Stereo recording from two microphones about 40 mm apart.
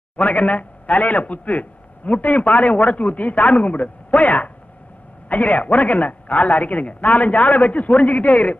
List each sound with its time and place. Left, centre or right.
0.2 s a man's voice: left